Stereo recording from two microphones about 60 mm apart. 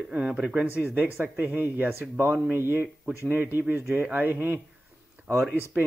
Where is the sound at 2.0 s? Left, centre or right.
Right.